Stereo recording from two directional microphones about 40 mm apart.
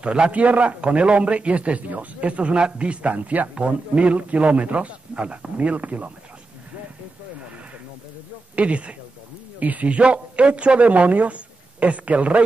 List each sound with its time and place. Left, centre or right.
0.0 s a man's voice: right
0.3 s a man's voice: right
8.5 s a man's voice: right